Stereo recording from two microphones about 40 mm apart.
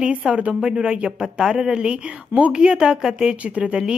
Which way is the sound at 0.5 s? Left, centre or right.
Centre.